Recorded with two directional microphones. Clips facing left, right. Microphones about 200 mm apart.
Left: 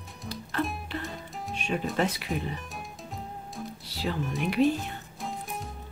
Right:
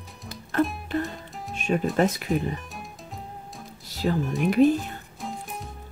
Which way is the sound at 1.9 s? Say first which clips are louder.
Right 5 dB; 45° right (ahead or behind).